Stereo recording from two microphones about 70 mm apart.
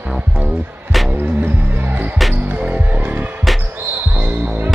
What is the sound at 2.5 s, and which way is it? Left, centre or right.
Music, right.